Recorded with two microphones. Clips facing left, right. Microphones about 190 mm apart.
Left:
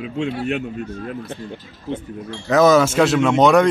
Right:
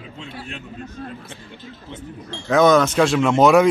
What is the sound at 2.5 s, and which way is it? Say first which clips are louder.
Speech: left 1 dB; 5° left (ahead or behind).